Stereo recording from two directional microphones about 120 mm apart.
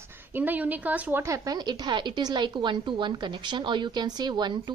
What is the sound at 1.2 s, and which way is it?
A woman's voice, 25° right (ahead or behind).